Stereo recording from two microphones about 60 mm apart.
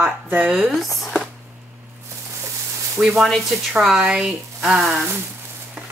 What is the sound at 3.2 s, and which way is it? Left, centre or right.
Speech, centre.